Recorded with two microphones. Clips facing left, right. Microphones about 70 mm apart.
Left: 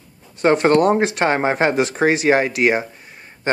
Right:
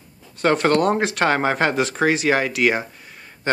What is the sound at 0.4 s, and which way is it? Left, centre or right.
Speech, centre.